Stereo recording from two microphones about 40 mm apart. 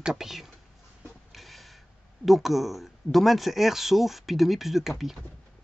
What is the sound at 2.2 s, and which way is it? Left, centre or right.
Speech, centre.